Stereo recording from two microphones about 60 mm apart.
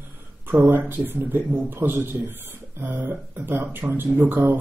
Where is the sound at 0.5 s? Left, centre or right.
Right.